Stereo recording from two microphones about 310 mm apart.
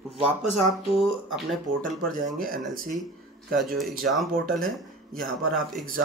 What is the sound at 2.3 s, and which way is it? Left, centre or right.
Speech, right.